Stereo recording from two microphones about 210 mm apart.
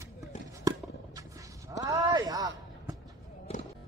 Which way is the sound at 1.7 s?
15° right (ahead or behind).